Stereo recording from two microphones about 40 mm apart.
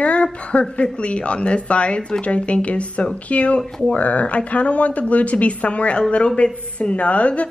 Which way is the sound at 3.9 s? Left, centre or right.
Left.